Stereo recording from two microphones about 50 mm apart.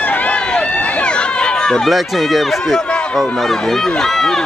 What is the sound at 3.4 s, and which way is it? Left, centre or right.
Speech, centre.